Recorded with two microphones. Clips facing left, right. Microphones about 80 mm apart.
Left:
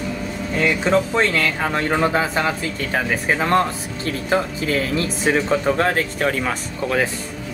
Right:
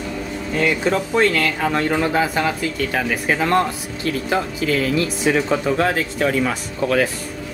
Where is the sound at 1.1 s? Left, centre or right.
Left.